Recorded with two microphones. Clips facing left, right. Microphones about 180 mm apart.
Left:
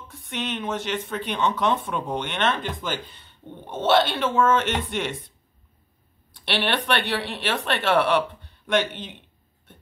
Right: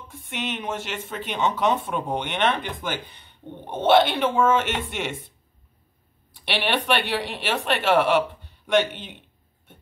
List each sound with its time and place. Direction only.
0.1 s speech: 10° right (ahead or behind)
6.3 s speech: 10° right (ahead or behind)